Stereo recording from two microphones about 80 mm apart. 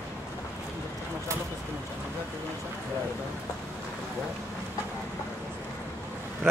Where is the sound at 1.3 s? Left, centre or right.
Right.